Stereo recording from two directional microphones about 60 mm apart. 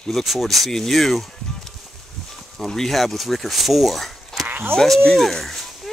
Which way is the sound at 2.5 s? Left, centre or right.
Centre.